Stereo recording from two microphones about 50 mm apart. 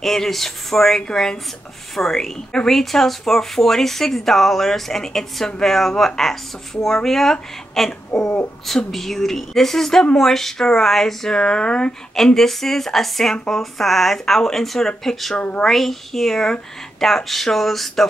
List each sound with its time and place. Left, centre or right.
0.0 s speech: centre
15.3 s speech: left
15.6 s speech: centre